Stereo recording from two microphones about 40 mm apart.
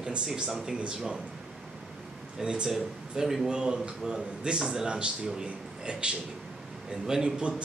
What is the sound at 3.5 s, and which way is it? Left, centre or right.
A man's voice, right.